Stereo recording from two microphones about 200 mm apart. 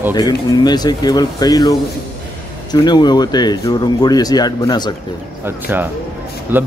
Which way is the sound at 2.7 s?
20° left (ahead or behind).